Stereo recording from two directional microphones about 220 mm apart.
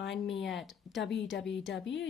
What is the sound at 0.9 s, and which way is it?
Speech, 55° left (ahead or behind).